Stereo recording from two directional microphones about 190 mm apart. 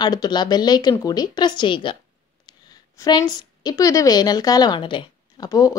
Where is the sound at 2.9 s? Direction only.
20° left (ahead or behind).